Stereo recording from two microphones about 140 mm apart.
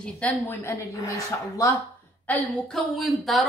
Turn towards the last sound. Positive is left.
turn(degrees=0)  # may be behind; listen again after turning